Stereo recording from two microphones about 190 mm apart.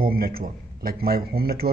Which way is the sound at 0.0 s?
50° right (ahead or behind).